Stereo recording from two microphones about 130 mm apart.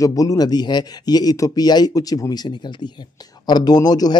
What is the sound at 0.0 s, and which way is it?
Speech, 25° left (ahead or behind).